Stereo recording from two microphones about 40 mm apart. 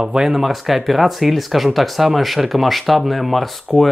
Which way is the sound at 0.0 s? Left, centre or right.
Centre.